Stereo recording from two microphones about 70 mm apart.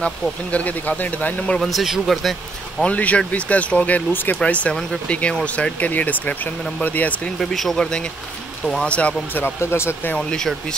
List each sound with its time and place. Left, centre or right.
0.0 s speech: centre
1.6 s speech: centre
2.8 s speech: left
7.3 s speech: centre
9.4 s speech: left
10.1 s speech: centre